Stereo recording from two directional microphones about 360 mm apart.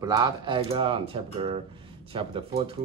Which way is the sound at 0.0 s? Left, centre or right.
Centre.